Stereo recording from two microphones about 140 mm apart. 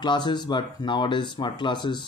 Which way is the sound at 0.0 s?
35° left (ahead or behind).